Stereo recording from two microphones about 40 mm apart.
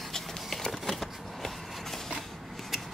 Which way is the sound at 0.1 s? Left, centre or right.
Centre.